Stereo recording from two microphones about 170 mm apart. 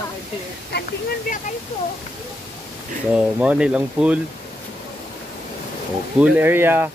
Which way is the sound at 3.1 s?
5° right (ahead or behind).